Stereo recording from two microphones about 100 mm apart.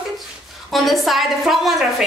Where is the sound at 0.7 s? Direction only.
Centre (ahead or behind).